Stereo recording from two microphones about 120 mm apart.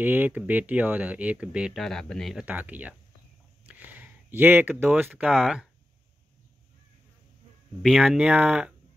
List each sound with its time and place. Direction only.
0.0 s speech: 15° right (ahead or behind); by 2.3 s 5° left (ahead or behind)
2.3 s speech: 10° right (ahead or behind)
3.6 s a sound: 15° right (ahead or behind)
5.3 s speech: centre (ahead or behind)
7.8 s speech: 5° right (ahead or behind)